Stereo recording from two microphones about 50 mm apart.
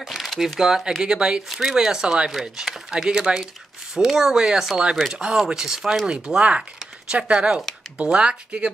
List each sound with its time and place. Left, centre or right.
0.0 s speech: centre; by 8.7 s right